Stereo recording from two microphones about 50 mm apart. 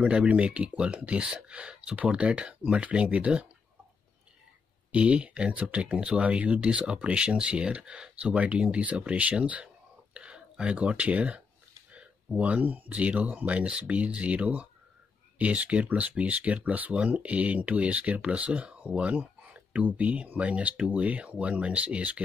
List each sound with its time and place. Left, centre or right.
0.0 s speech: right
4.9 s speech: right